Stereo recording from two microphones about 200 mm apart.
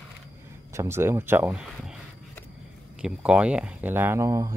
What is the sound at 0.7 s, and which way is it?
Speech, 15° right (ahead or behind).